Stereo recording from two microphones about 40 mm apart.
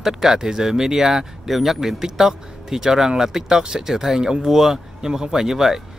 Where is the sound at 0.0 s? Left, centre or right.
Centre.